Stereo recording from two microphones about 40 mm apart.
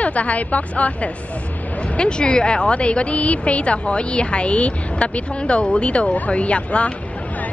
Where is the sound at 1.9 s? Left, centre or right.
Left.